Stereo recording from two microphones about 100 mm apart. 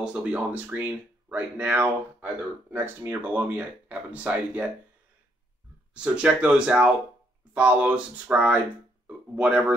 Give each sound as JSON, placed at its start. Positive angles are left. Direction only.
{"t": 0.0, "sound": "speech", "side_deg": -10}
{"t": 5.9, "sound": "speech", "side_deg": -10}